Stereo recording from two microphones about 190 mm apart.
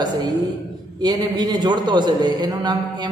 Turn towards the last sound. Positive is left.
turn(degrees=-20)  # may be behind; listen again after turning